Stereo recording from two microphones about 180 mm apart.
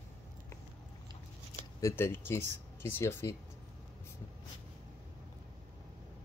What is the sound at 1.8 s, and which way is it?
Speech, 15° left (ahead or behind).